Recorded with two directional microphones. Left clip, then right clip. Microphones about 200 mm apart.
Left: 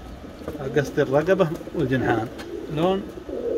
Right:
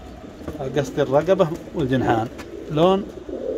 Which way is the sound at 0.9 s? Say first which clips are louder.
Right 3 dB; 10° right (ahead or behind).